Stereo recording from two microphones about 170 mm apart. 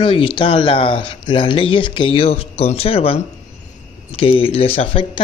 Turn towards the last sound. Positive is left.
turn(degrees=35)  # may be behind; listen again after turning